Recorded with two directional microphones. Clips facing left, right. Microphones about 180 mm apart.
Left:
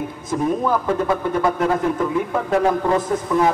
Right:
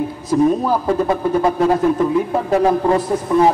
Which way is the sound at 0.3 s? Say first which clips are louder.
Right 5 dB; 35° right (ahead or behind).